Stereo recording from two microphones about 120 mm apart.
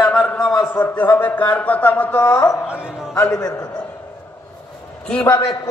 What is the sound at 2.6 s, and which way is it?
Speech, 10° right (ahead or behind).